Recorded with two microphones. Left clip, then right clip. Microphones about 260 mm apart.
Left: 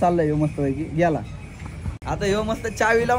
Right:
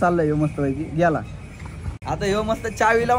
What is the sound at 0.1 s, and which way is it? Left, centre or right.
Speech, right.